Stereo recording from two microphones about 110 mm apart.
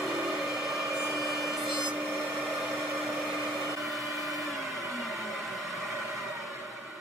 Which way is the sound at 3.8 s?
Centre (ahead or behind).